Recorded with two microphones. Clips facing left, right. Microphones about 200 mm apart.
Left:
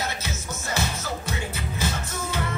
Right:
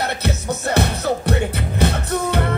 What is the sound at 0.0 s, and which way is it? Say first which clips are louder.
Music: right 8 dB; 65° right (ahead or behind).